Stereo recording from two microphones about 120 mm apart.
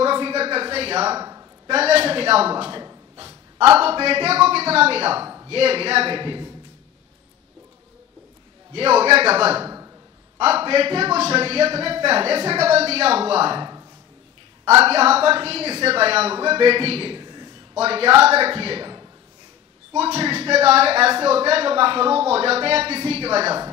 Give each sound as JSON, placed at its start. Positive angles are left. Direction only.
{"t": 0.0, "sound": "a sound", "side_deg": -50}
{"t": 1.1, "sound": "a man's voice", "side_deg": -30}
{"t": 1.7, "sound": "speech", "side_deg": -55}
{"t": 3.7, "sound": "speech", "side_deg": -50}
{"t": 5.2, "sound": "a sound", "side_deg": -25}
{"t": 5.5, "sound": "speech", "side_deg": -50}
{"t": 8.7, "sound": "speech", "side_deg": -55}
{"t": 9.5, "sound": "a sound", "side_deg": -25}
{"t": 10.4, "sound": "speech", "side_deg": -55}
{"t": 13.6, "sound": "a sound", "side_deg": -30}
{"t": 14.7, "sound": "a man's voice", "side_deg": -55}
{"t": 17.7, "sound": "speech", "side_deg": -55}
{"t": 20.0, "sound": "speech", "side_deg": -55}